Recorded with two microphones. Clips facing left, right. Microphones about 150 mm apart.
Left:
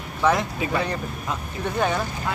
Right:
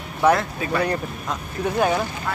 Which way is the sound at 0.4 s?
15° left (ahead or behind).